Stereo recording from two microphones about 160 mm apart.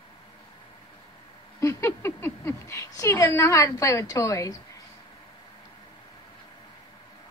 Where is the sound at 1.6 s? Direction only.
15° left (ahead or behind).